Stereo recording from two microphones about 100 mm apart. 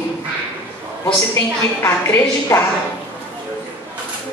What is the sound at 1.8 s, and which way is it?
Speech, 30° left (ahead or behind).